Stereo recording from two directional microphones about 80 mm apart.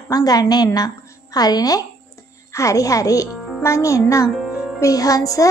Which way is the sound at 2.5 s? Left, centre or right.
Left.